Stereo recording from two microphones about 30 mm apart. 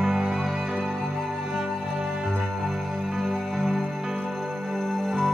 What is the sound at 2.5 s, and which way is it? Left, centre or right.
Music, centre.